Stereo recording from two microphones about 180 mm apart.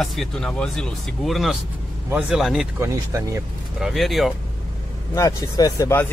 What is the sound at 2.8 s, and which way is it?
Speech, 15° right (ahead or behind).